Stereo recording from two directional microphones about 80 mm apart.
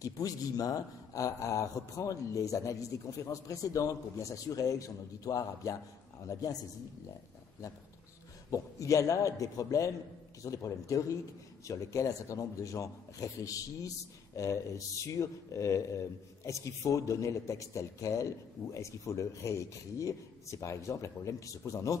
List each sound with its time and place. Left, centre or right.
0.0 s speech: left
8.5 s a man's voice: left